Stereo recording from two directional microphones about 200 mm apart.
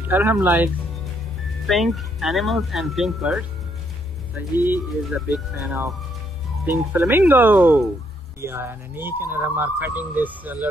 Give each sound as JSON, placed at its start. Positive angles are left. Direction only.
{"t": 0.1, "sound": "speech", "side_deg": -10}
{"t": 1.7, "sound": "speech", "side_deg": 0}
{"t": 5.1, "sound": "speech", "side_deg": -5}